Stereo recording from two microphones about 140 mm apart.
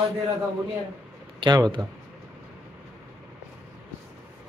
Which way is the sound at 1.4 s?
30° right (ahead or behind).